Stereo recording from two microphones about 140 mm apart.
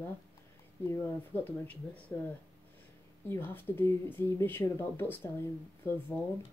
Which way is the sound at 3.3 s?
15° left (ahead or behind).